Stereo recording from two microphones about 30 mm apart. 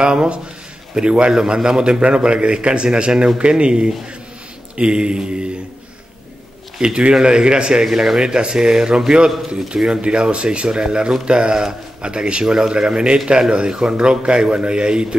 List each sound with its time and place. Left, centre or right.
0.0 s a man's voice: right
6.8 s a man's voice: right
7.8 s a man's voice: centre; by 15.1 s right